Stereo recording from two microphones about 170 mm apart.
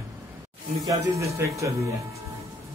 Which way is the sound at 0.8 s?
20° right (ahead or behind).